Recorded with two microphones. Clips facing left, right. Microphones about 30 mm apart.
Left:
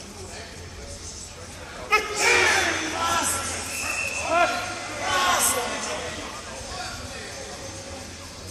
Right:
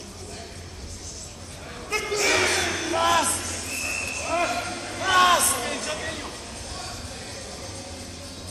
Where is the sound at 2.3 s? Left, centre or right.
Centre.